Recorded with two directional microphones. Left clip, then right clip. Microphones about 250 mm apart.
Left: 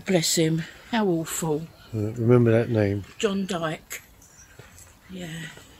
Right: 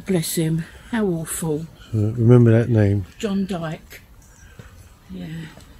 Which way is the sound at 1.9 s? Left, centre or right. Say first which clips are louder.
Right 4 dB; centre.